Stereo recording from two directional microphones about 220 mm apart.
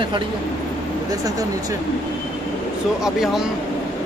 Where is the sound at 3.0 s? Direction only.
Centre (ahead or behind).